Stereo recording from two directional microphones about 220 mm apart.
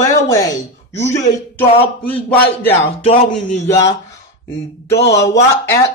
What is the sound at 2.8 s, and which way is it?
Music, 25° left (ahead or behind).